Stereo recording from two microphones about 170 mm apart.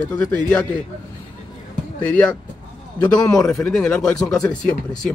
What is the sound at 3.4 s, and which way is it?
Speech, 5° left (ahead or behind).